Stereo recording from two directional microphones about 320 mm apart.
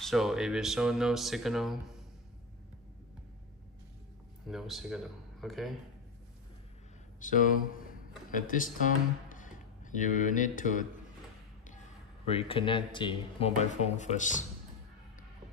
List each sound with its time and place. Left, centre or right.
0.0 s speech: centre
4.5 s speech: centre
7.2 s speech: left
12.3 s speech: centre